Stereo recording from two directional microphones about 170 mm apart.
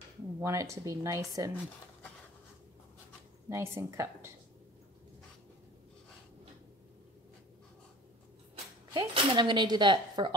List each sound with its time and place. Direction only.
0.4 s speech: 15° right (ahead or behind)
3.4 s speech: 15° right (ahead or behind)
8.9 s speech: 25° right (ahead or behind)